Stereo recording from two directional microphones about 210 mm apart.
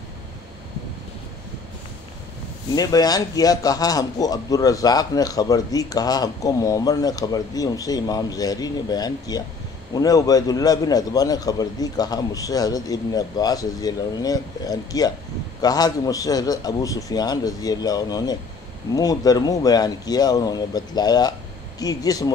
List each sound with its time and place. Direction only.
2.7 s a man's voice: 15° left (ahead or behind)